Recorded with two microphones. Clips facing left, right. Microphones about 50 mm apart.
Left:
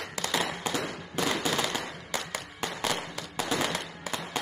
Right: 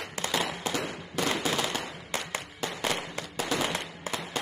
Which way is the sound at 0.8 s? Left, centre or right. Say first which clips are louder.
Even; centre.